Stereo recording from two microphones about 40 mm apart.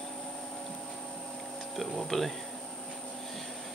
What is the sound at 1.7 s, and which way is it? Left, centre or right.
Music, centre.